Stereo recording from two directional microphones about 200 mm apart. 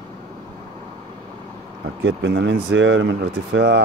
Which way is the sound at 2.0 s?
65° right (ahead or behind).